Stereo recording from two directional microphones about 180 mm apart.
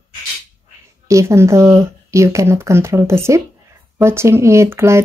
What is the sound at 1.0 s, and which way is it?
Speech, 15° right (ahead or behind).